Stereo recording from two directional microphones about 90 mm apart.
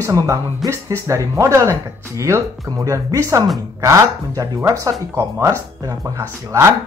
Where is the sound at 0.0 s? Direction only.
35° right (ahead or behind).